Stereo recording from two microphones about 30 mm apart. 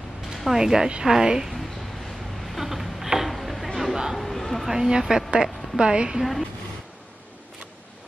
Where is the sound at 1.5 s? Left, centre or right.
Centre.